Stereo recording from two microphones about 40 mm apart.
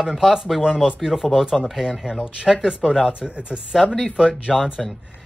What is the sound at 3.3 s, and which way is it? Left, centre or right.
Speech, right.